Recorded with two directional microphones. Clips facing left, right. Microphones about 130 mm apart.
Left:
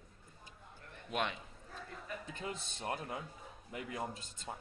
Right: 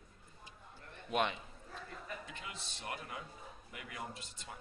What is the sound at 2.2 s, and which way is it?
A man's voice, 40° left (ahead or behind).